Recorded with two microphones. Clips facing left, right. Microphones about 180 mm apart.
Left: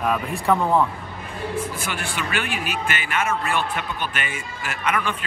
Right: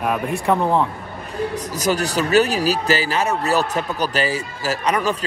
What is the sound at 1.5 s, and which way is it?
Speech, 40° right (ahead or behind).